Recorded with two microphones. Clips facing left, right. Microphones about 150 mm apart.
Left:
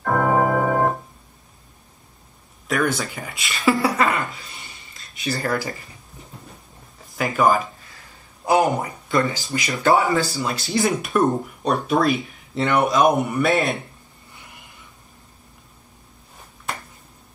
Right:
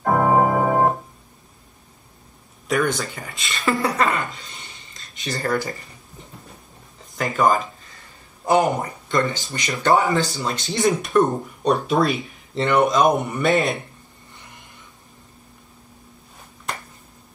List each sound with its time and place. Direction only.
0.0 s organ: 20° right (ahead or behind)
2.7 s speech: 5° left (ahead or behind)
7.2 s speech: 5° left (ahead or behind)